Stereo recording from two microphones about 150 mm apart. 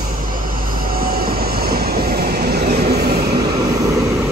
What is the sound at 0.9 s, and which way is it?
Train, 75° right (ahead or behind).